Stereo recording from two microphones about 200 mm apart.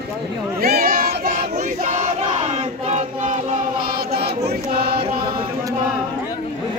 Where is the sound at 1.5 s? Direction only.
35° right (ahead or behind); by 4.4 s 50° right (ahead or behind).